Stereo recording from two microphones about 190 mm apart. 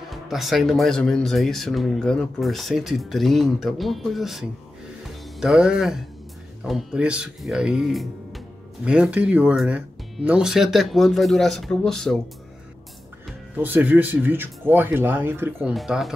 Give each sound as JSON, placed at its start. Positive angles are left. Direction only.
{"t": 0.1, "sound": "speech", "side_deg": 0}
{"t": 13.6, "sound": "speech", "side_deg": -10}
{"t": 15.7, "sound": "speech", "side_deg": 0}